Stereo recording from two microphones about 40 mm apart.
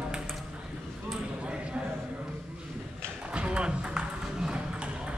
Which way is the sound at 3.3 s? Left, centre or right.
Right.